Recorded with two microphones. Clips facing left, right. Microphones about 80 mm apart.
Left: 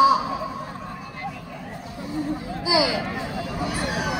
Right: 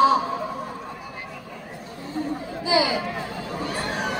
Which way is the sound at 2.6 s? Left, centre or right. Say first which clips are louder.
Even; centre.